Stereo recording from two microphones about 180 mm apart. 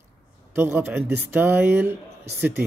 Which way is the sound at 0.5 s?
15° right (ahead or behind).